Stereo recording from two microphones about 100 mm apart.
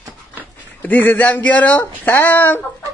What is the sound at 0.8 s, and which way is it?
Speech, 20° left (ahead or behind).